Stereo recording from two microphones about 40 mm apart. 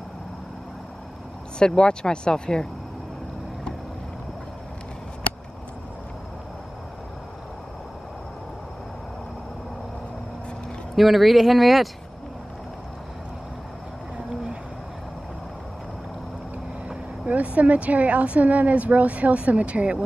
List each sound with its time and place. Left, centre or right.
1.6 s speech: left
11.0 s speech: centre
17.3 s speech: right